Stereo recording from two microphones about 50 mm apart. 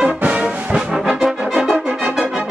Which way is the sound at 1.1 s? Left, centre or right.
Centre.